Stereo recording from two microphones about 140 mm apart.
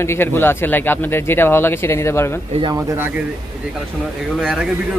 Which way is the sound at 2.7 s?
15° right (ahead or behind).